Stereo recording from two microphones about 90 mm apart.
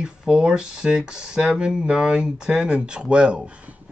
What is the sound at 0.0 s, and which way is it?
Speech, 5° right (ahead or behind).